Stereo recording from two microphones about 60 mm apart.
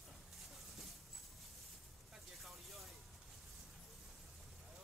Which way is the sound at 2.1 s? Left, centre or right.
Centre.